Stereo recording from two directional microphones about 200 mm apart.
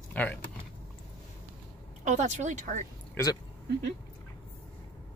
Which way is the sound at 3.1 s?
20° left (ahead or behind).